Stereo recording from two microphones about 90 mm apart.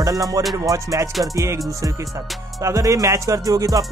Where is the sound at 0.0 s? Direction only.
40° right (ahead or behind).